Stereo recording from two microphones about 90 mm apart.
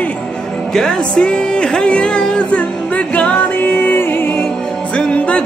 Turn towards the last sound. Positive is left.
turn(degrees=15)  # may be behind; listen again after turning